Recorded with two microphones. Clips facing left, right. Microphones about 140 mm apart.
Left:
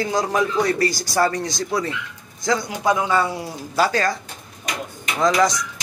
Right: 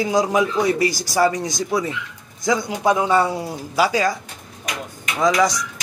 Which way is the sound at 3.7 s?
10° right (ahead or behind).